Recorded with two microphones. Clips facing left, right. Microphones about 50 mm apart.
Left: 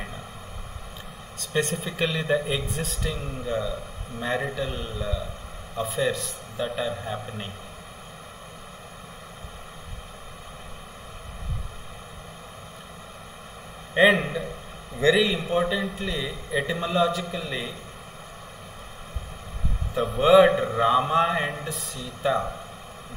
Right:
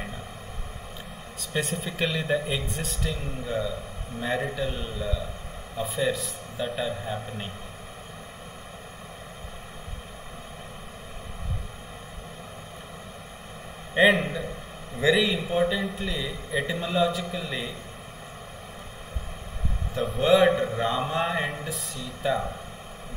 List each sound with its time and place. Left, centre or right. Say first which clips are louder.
1.4 s a man's voice: left 3 dB; centre
13.9 s a man's voice: left 1 dB; centre
19.9 s a man's voice: left 3 dB; centre